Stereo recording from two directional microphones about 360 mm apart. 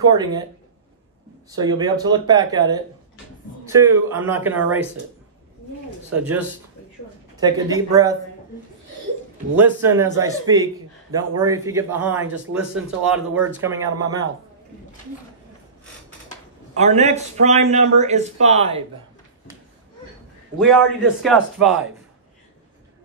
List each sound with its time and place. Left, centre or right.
0.0 s a man's voice: centre
1.5 s a man's voice: centre
6.1 s a man's voice: centre
9.6 s a man's voice: centre
16.7 s a man's voice: centre
20.5 s a man's voice: centre